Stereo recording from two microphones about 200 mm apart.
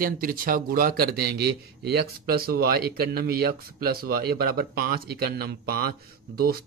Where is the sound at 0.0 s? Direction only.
45° right (ahead or behind).